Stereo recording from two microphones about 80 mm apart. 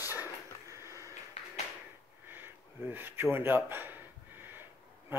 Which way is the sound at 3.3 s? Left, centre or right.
Right.